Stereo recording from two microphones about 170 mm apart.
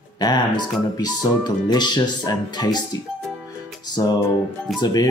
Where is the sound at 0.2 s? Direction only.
25° left (ahead or behind).